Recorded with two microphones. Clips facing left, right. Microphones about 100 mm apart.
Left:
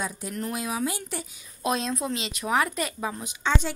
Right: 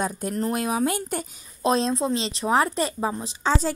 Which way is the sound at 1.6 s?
30° right (ahead or behind).